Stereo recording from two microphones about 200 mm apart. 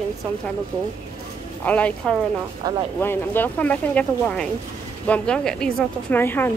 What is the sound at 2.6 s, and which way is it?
Speech, 20° right (ahead or behind).